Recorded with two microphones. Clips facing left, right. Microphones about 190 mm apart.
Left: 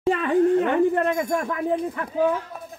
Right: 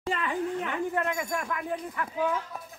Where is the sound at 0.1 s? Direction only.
60° left (ahead or behind).